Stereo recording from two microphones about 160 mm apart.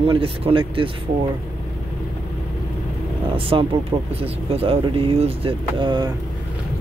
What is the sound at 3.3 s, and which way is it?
Speech, 35° right (ahead or behind).